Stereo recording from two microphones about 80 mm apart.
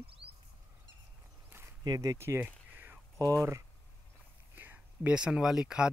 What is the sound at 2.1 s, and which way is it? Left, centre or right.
Speech, right.